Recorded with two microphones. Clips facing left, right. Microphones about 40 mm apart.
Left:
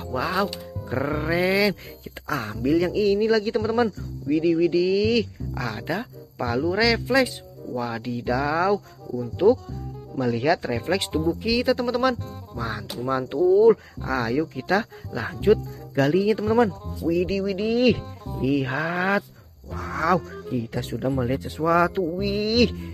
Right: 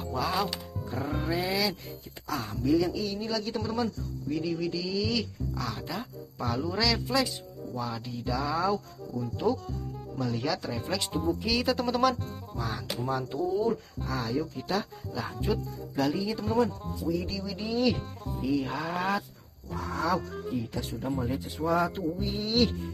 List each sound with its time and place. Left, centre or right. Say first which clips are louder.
0.1 s speech: left 5 dB; left
0.8 s speech: left 7 dB; left
2.2 s a man's voice: left 5 dB; left
9.4 s speech: left 10 dB; left
10.2 s a man's voice: left 9 dB; left
10.8 s speech: left 7 dB; left
11.1 s speech: left 3 dB; centre
12.5 s speech: left 5 dB; left
13.1 s a man's voice: left 11 dB; left
13.7 s speech: left 12 dB; left
15.1 s a man's voice: left 11 dB; left
19.8 s speech: left 6 dB; left
21.8 s speech: left 7 dB; left